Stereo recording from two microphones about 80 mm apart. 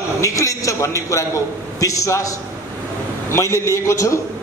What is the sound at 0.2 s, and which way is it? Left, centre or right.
A man's voice, left.